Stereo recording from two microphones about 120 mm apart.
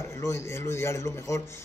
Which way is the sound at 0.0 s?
25° left (ahead or behind).